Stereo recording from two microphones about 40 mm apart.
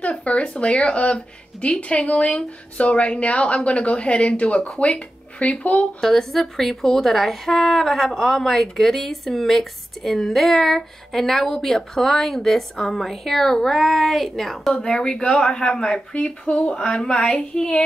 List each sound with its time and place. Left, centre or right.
0.0 s a woman's voice: left
5.9 s a woman's voice: centre
14.7 s speech: centre